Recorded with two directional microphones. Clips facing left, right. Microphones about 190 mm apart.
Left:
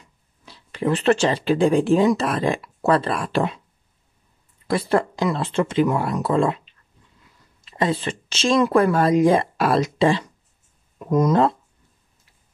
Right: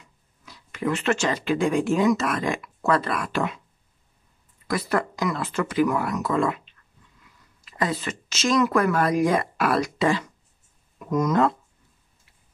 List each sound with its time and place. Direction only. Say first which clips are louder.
0.0 s speech: left 2 dB; 30° left (ahead or behind)
4.6 s speech: left 4 dB; 30° left (ahead or behind)
7.6 s speech: left 4 dB; 25° left (ahead or behind)